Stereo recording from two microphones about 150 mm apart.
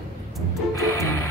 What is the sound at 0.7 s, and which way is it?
Music, 20° left (ahead or behind).